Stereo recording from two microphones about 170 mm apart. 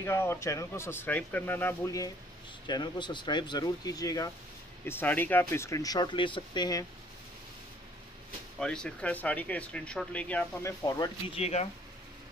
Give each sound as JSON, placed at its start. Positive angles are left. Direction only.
{"t": 0.0, "sound": "speech", "side_deg": 15}
{"t": 8.5, "sound": "speech", "side_deg": 5}
{"t": 11.3, "sound": "speech", "side_deg": 40}